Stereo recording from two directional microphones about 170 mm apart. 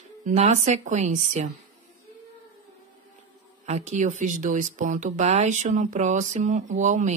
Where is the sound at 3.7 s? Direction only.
40° right (ahead or behind).